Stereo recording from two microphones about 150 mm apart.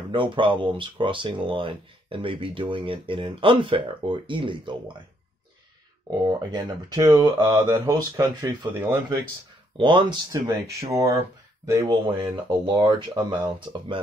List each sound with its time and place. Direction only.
0.1 s speech: 35° right (ahead or behind)
6.0 s speech: 30° right (ahead or behind)
9.8 s speech: 30° right (ahead or behind)
10.7 s speech: 20° right (ahead or behind)